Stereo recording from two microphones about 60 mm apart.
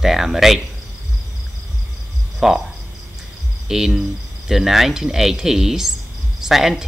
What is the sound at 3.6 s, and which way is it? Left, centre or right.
Cricket, centre.